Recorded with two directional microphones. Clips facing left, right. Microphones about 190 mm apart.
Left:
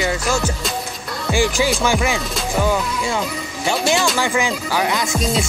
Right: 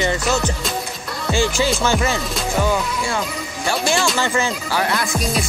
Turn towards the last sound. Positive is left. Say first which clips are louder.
# left 1 dB
turn(degrees=25)  # may be behind; listen again after turning